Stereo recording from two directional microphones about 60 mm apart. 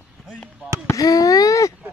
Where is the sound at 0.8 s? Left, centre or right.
Left.